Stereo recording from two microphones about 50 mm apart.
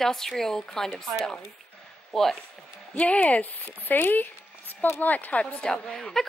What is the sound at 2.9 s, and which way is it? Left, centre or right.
Speech, left.